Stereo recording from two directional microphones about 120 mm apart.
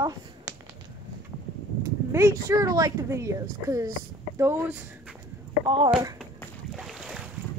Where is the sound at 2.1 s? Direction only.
25° right (ahead or behind).